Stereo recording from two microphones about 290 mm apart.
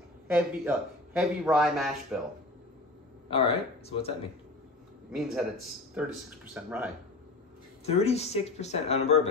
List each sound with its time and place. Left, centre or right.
0.3 s a man's voice: centre
3.3 s speech: centre
5.1 s a man's voice: centre
7.8 s speech: left